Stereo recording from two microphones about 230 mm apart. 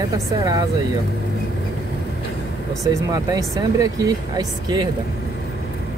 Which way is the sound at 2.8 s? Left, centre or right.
Centre.